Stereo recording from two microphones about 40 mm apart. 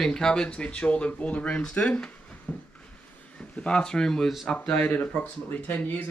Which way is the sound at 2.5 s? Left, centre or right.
Left.